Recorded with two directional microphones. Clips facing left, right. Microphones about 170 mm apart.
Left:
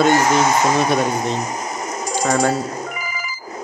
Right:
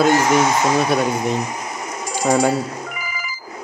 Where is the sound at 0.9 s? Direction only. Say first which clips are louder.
Even; 40° left (ahead or behind).